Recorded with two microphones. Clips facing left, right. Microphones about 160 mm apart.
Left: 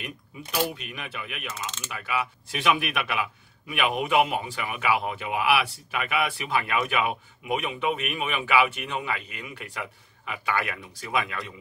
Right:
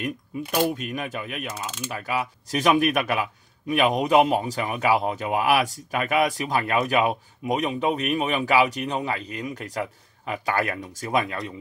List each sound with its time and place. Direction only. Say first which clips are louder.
0.0 s speech: right 9 dB; 45° right (ahead or behind)